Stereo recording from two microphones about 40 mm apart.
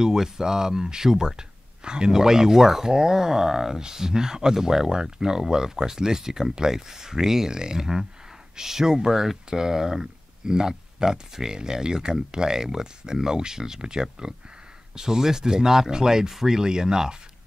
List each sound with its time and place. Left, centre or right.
0.0 s speech: centre